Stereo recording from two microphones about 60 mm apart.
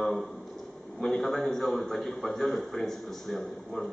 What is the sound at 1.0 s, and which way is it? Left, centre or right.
A man's voice, centre.